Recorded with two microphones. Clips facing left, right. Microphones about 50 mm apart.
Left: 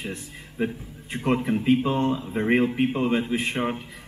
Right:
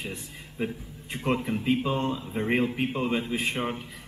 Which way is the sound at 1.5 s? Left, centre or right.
Centre.